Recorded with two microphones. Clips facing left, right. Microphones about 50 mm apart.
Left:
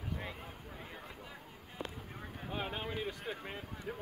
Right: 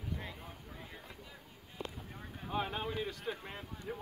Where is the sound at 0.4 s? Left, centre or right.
Centre.